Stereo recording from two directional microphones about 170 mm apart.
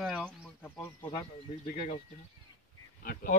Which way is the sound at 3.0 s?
55° left (ahead or behind).